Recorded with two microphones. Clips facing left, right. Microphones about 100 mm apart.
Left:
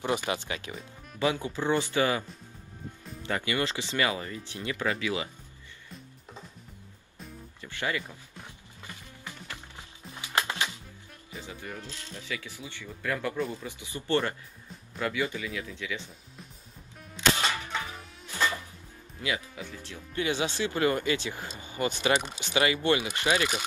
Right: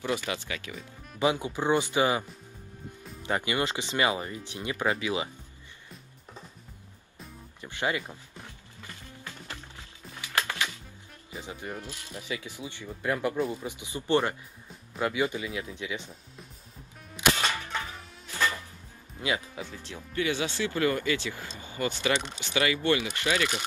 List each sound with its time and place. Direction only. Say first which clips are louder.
0.0 s speech: left 2 dB; 20° left (ahead or behind)
1.2 s speech: right 2 dB; 15° right (ahead or behind)
3.3 s speech: right 1 dB; 20° right (ahead or behind)
7.6 s speech: right 2 dB; 20° right (ahead or behind)
9.8 s music: even; 20° left (ahead or behind)
11.8 s speech: right 2 dB; 15° right (ahead or behind)
17.2 s music: even; 10° right (ahead or behind)
19.2 s speech: right 2 dB; 20° right (ahead or behind)
20.2 s speech: even; 20° left (ahead or behind)
22.2 s speech: even; 10° left (ahead or behind)
22.5 s speech: left 1 dB; 25° left (ahead or behind)